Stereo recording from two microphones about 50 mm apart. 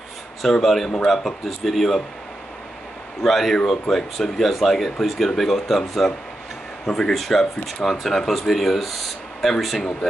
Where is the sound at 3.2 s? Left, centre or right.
Centre.